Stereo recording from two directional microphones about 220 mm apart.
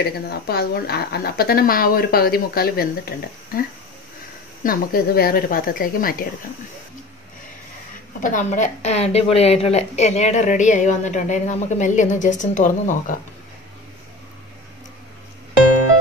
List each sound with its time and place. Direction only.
0.0 s speech: 45° left (ahead or behind)
4.6 s a woman's voice: 40° left (ahead or behind)
8.2 s a woman's voice: 35° left (ahead or behind)